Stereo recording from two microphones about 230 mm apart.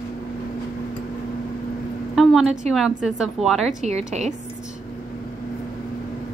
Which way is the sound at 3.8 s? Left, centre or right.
Right.